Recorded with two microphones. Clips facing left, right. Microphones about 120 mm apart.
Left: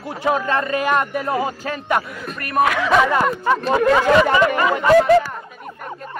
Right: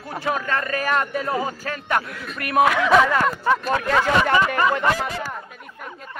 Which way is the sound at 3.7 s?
15° left (ahead or behind).